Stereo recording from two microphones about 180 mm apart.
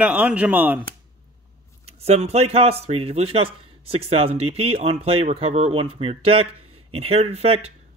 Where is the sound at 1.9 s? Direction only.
35° right (ahead or behind).